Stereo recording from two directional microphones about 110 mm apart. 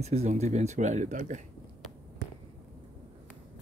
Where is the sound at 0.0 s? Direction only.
85° right.